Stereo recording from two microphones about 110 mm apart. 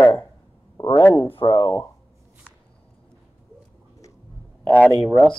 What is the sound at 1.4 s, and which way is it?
Speech, 40° left (ahead or behind).